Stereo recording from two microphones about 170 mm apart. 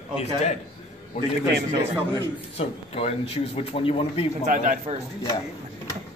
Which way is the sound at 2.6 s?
35° left (ahead or behind).